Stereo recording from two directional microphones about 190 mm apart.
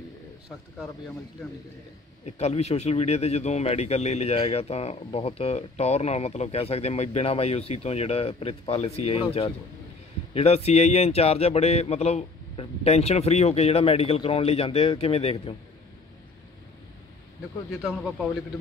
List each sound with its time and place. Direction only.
0.7 s speech: centre (ahead or behind)
2.2 s speech: 35° left (ahead or behind)
17.8 s speech: centre (ahead or behind)